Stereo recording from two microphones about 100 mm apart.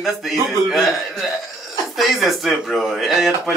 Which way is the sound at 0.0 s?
Centre (ahead or behind).